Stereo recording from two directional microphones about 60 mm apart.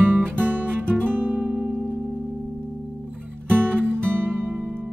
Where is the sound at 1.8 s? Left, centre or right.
Left.